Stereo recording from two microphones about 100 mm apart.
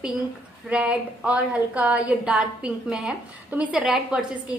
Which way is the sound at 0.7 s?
10° right (ahead or behind).